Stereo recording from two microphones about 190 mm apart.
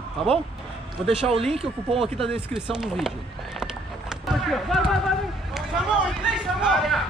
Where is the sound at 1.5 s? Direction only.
30° right (ahead or behind).